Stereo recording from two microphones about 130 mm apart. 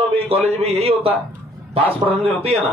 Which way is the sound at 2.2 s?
50° right (ahead or behind).